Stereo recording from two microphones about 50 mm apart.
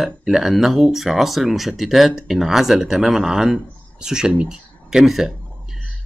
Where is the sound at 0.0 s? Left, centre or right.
Centre.